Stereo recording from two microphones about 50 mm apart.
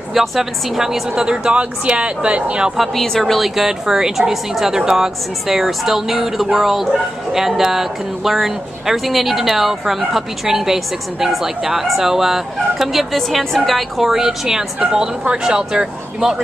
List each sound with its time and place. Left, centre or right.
0.1 s a woman's voice: centre; by 2.7 s right
2.8 s a woman's voice: centre